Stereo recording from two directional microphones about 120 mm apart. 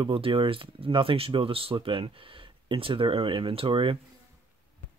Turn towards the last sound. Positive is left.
turn(degrees=-45)  # may be behind; listen again after turning